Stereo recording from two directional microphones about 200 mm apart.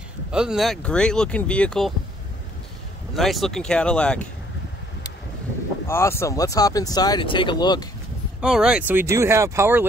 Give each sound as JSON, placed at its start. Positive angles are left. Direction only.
{"t": 0.3, "sound": "speech", "side_deg": -5}
{"t": 3.2, "sound": "speech", "side_deg": 0}
{"t": 5.9, "sound": "speech", "side_deg": 10}
{"t": 8.4, "sound": "speech", "side_deg": -5}